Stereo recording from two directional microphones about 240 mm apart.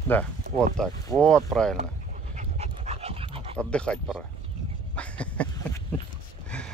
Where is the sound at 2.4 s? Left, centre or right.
Right.